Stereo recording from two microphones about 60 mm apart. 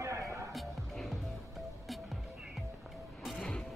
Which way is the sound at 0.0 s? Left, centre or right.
Right.